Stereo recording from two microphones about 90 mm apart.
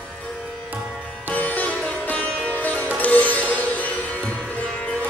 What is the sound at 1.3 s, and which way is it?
Sitar, 20° left (ahead or behind).